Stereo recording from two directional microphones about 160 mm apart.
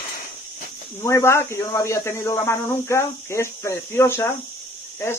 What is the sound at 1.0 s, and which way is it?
Speech, 15° left (ahead or behind).